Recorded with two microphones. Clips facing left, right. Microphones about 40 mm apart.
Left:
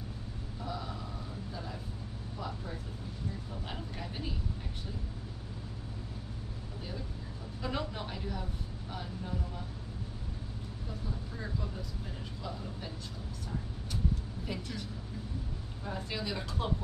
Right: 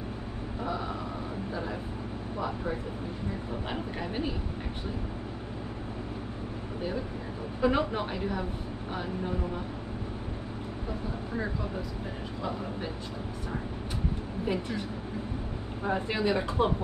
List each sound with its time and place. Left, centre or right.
0.7 s vehicle: right
2.3 s vehicle: right
3.7 s speech: right
7.6 s speech: right
14.4 s speech: right